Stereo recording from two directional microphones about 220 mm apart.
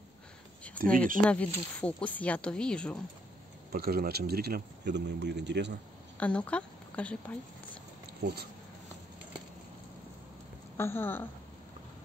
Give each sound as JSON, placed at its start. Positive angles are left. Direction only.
{"t": 0.9, "sound": "speech", "side_deg": -40}
{"t": 1.2, "sound": "speech", "side_deg": 5}
{"t": 3.7, "sound": "speech", "side_deg": -45}
{"t": 6.1, "sound": "a woman's voice", "side_deg": 5}
{"t": 8.2, "sound": "speech", "side_deg": -50}
{"t": 10.8, "sound": "a woman's voice", "side_deg": 10}